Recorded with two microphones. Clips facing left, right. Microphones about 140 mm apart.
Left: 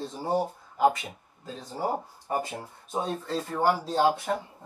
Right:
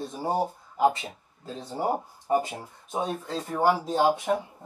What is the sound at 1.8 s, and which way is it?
Speech, 20° right (ahead or behind).